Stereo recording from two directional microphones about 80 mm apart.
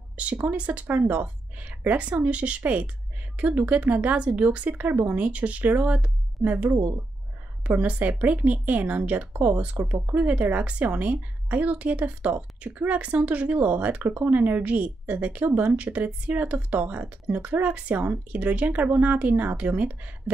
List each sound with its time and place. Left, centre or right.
0.2 s a woman's voice: centre